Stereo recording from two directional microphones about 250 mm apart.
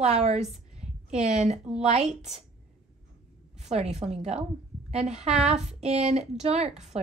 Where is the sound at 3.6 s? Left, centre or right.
Right.